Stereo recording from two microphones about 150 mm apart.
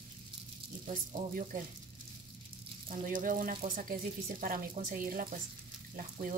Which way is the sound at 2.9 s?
60° right (ahead or behind).